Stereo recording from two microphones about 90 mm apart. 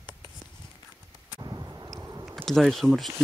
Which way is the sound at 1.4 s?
40° right (ahead or behind).